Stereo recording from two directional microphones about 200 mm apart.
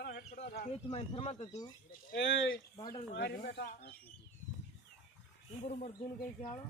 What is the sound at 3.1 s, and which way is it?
Speech, 55° left (ahead or behind).